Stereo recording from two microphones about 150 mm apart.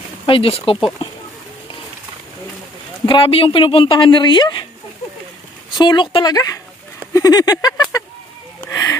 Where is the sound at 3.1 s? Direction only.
35° left (ahead or behind).